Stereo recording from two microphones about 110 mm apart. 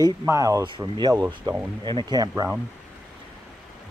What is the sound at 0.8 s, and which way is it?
Speech, 40° right (ahead or behind).